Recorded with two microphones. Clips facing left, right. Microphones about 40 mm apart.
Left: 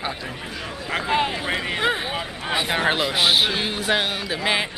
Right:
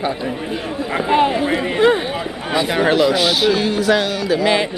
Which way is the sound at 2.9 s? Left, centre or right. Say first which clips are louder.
Right 5 dB; left.